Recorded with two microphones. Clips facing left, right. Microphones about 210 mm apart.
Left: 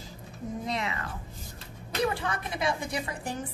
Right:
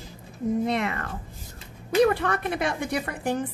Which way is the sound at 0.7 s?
55° right (ahead or behind).